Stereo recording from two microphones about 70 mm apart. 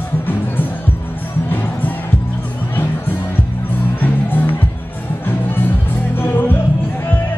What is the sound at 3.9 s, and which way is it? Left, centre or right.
Music, left.